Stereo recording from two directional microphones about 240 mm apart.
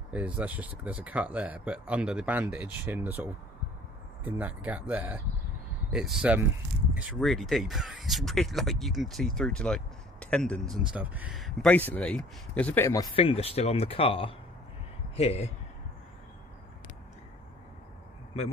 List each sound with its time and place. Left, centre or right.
0.1 s speech: centre; by 15.5 s left